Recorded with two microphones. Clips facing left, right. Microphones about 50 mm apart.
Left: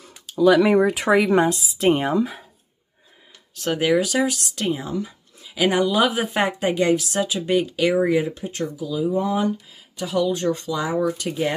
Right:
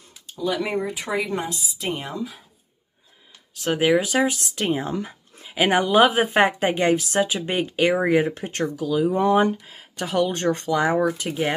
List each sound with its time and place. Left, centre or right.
0.3 s speech: left
3.7 s speech: centre
4.8 s speech: right
8.6 s speech: right